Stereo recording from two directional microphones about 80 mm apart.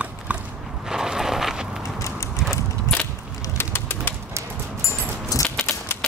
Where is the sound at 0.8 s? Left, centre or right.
Centre.